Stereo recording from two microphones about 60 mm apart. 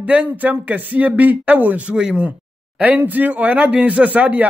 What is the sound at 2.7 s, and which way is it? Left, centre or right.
Speech, right.